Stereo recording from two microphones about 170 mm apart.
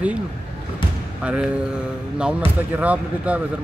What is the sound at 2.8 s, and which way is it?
Speech, 10° right (ahead or behind).